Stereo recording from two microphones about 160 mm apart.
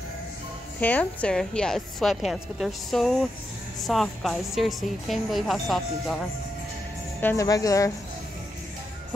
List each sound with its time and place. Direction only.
0.7 s a woman's voice: 10° left (ahead or behind)
7.2 s speech: 15° left (ahead or behind)